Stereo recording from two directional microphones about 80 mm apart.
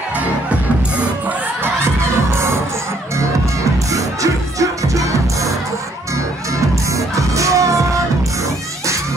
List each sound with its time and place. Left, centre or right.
2.3 s music: right
3.9 s music: right
6.9 s music: right